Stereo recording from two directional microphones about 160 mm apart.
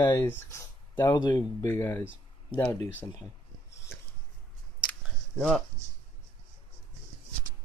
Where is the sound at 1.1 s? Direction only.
25° left (ahead or behind).